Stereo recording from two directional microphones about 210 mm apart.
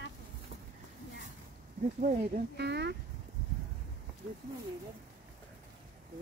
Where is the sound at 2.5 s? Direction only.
55° right (ahead or behind).